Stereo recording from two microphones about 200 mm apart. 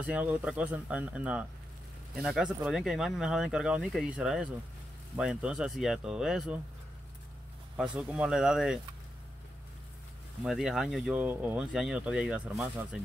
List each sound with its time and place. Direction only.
0.0 s speech: 5° right (ahead or behind)
7.7 s speech: 5° right (ahead or behind)
10.4 s speech: centre (ahead or behind)